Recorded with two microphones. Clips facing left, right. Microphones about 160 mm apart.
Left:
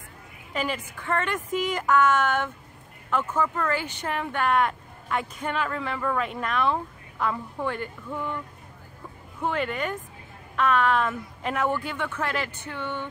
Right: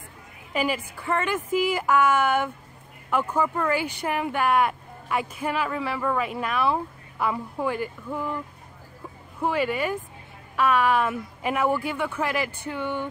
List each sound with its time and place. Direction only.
0.5 s speech: 10° right (ahead or behind)
9.4 s speech: 5° right (ahead or behind)